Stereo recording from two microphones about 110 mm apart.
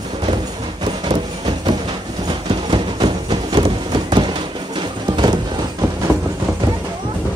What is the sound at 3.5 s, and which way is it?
Music, 45° right (ahead or behind).